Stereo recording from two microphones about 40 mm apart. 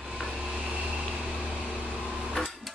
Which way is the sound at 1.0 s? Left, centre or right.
Centre.